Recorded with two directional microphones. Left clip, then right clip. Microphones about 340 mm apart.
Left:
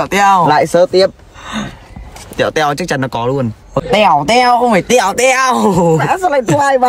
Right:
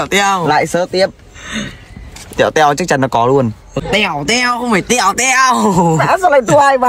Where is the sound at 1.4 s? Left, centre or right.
Centre.